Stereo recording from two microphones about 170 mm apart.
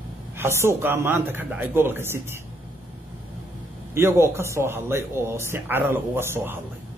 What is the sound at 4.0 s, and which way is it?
Speech, 15° right (ahead or behind).